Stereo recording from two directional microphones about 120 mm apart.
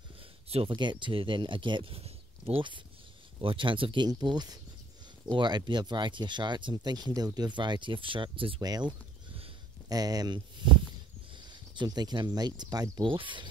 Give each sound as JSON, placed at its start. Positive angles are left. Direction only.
{"t": 0.5, "sound": "speech", "side_deg": -55}
{"t": 0.7, "sound": "speech", "side_deg": -40}
{"t": 8.5, "sound": "speech", "side_deg": -35}
{"t": 13.1, "sound": "speech", "side_deg": -45}